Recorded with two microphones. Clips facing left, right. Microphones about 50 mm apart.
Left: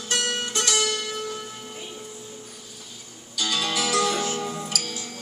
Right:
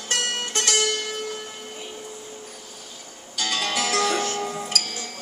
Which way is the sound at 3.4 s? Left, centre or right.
Right.